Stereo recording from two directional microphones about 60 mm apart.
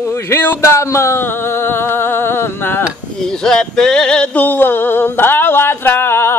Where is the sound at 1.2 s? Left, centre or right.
Left.